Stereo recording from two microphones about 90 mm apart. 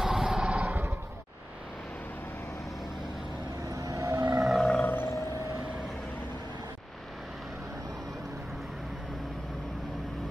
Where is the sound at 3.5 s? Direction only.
40° right (ahead or behind).